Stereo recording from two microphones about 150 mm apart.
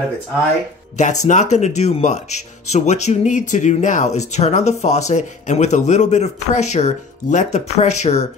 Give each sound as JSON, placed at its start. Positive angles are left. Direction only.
{"t": 0.9, "sound": "speech", "side_deg": 50}